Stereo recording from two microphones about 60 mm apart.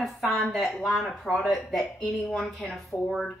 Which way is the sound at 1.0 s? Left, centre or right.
Centre.